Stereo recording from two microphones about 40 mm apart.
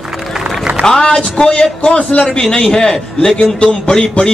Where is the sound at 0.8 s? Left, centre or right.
Centre.